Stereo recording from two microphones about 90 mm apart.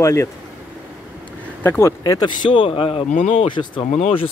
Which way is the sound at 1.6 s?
30° left (ahead or behind).